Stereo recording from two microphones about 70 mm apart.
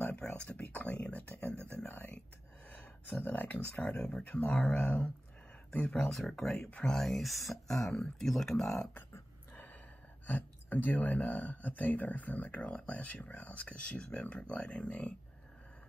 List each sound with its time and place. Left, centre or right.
0.0 s a sound: centre
4.0 s speech: left; by 8.8 s centre
10.2 s speech: left